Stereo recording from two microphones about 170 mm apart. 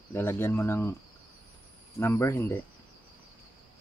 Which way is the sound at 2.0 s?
15° left (ahead or behind).